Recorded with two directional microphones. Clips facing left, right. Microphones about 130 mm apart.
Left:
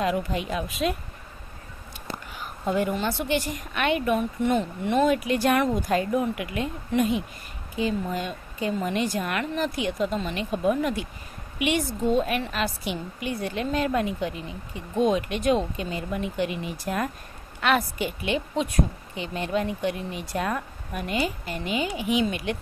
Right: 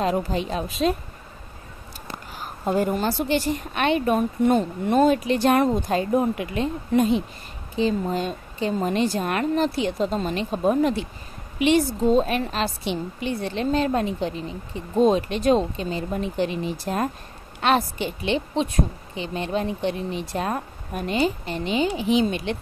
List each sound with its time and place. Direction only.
0.0 s a woman's voice: 35° right (ahead or behind)
2.3 s a woman's voice: 35° right (ahead or behind)